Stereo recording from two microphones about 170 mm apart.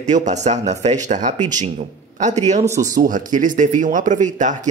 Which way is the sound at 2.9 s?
50° right (ahead or behind).